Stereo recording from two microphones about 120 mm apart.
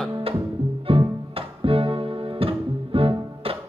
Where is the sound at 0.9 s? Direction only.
50° right (ahead or behind).